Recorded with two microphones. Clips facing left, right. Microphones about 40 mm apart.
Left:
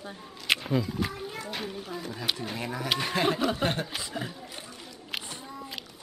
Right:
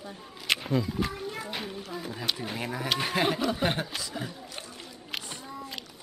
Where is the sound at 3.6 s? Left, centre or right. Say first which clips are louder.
Right 3 dB; centre.